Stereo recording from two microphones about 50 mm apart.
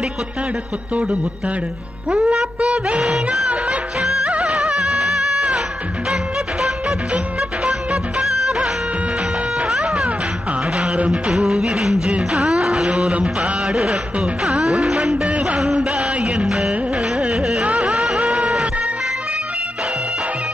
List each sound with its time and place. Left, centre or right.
2.0 s music: centre
2.6 s music of bollywood: right
7.9 s music of bollywood: centre
9.8 s music: centre
11.1 s music: centre
15.2 s music: right
15.6 s music: centre
16.0 s music of bollywood: right
16.3 s music of bollywood: centre
17.2 s carnatic music: centre
17.6 s music: right
18.2 s music: right